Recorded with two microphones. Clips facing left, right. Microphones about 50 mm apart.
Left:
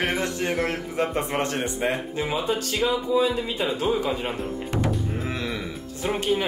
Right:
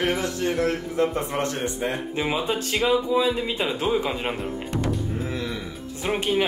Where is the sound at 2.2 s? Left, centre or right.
Right.